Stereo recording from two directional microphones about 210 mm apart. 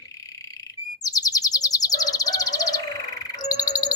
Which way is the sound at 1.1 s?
15° left (ahead or behind).